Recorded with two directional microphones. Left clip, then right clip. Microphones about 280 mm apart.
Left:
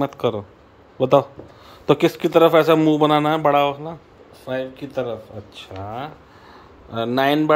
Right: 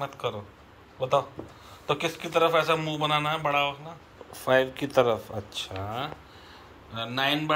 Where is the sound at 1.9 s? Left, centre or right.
Left.